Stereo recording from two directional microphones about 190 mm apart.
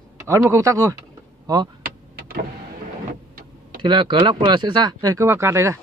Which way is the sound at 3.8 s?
25° right (ahead or behind).